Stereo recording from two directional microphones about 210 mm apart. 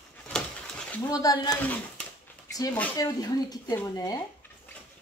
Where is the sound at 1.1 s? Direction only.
20° left (ahead or behind).